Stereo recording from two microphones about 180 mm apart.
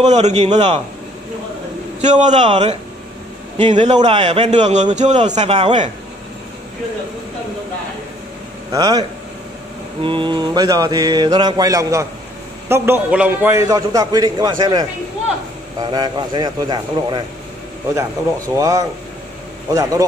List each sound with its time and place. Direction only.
0.0 s a man's voice: 40° right (ahead or behind)
2.0 s a man's voice: 40° right (ahead or behind)
8.7 s mantra: 20° right (ahead or behind)
10.0 s mantra: 25° right (ahead or behind)
12.6 s a man's voice: 10° right (ahead or behind)
15.8 s mantra: 20° right (ahead or behind)
18.6 s a man's voice: 20° right (ahead or behind)
19.7 s mantra: 20° right (ahead or behind)